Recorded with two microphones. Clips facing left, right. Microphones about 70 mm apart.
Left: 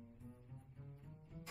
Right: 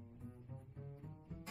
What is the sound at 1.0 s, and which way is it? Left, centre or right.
Music, right.